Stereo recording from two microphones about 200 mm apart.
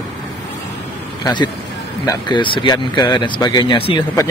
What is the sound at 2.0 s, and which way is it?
Speech, 20° left (ahead or behind).